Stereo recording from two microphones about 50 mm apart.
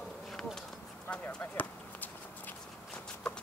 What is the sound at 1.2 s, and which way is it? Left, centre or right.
Clip-clop, left.